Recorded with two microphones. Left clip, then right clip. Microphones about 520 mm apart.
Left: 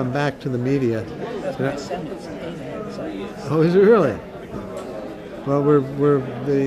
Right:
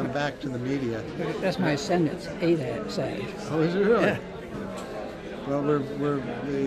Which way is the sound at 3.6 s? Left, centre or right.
Left.